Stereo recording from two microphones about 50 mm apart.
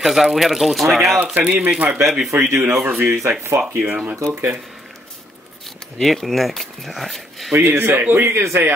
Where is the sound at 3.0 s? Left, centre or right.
Right.